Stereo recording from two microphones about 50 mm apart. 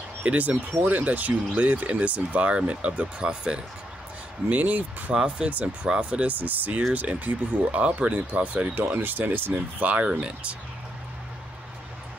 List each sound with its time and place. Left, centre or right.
0.2 s speech: right
4.5 s speech: right
5.1 s speech: centre